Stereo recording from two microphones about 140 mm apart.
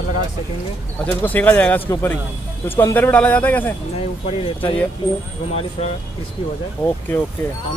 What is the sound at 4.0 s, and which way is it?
Speech, 45° left (ahead or behind).